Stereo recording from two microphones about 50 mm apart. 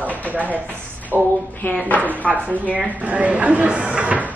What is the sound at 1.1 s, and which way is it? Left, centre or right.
Speech, right.